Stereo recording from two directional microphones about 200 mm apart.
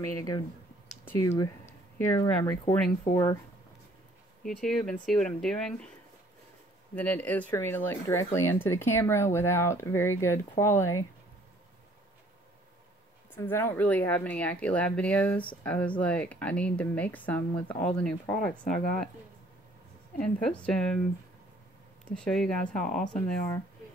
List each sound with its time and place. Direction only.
0.0 s a woman's voice: 15° left (ahead or behind)
3.1 s speech: 20° left (ahead or behind)
4.5 s speech: centre (ahead or behind)
7.0 s a woman's voice: 5° left (ahead or behind)
13.3 s a woman's voice: 10° left (ahead or behind)
18.5 s speech: 40° left (ahead or behind)
20.2 s speech: 5° left (ahead or behind)
22.1 s speech: 5° left (ahead or behind)
22.8 s speech: 40° left (ahead or behind)
23.1 s a woman's voice: 10° left (ahead or behind)